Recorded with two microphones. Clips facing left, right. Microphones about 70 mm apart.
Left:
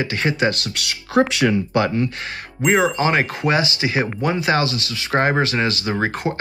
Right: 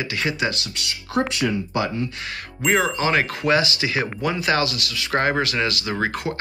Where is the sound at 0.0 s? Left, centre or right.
Left.